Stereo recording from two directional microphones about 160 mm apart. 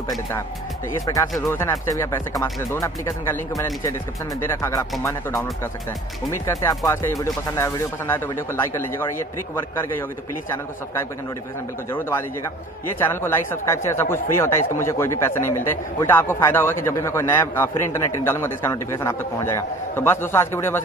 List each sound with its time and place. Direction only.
1.1 s speech: 25° left (ahead or behind)
6.3 s speech: 15° left (ahead or behind)
13.0 s speech: 15° left (ahead or behind)